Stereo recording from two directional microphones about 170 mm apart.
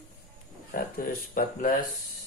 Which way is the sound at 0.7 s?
60° left (ahead or behind).